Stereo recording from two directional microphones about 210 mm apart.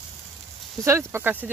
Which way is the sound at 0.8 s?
10° right (ahead or behind).